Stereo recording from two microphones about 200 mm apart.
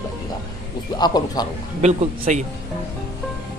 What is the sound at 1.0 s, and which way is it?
Speech, 20° left (ahead or behind).